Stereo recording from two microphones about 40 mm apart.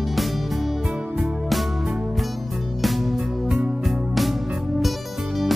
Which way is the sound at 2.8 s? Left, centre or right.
Centre.